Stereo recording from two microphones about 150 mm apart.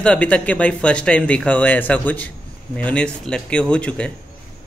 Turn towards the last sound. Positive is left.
turn(degrees=5)  # may be behind; listen again after turning